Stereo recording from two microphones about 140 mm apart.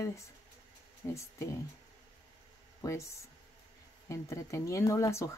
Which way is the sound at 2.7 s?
20° left (ahead or behind).